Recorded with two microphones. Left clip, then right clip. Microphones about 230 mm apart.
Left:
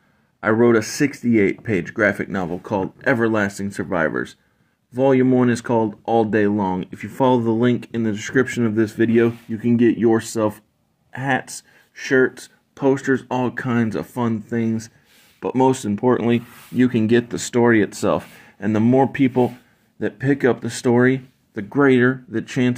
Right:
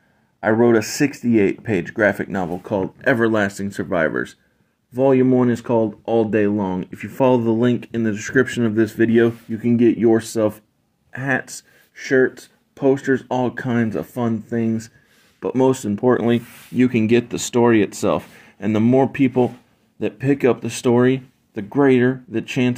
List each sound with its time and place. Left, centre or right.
0.4 s speech: centre
3.2 s speech: centre
3.6 s speech: centre
17.3 s speech: centre
17.8 s speech: centre
20.8 s speech: centre
21.8 s speech: centre